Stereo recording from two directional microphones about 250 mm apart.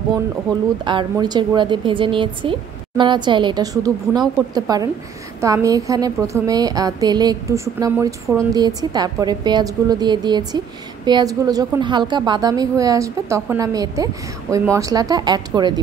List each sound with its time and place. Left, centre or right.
0.8 s a woman's voice: centre